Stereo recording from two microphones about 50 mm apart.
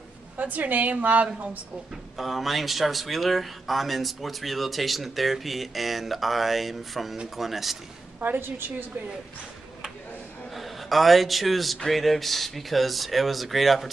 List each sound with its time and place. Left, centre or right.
0.4 s a woman's voice: right
2.1 s speech: centre
8.2 s a woman's voice: right
10.5 s speech: centre